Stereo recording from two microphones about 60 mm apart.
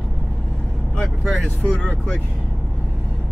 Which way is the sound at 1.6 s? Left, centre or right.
Left.